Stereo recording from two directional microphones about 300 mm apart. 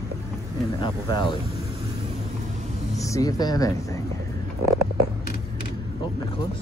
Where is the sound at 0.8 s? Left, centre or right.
Centre.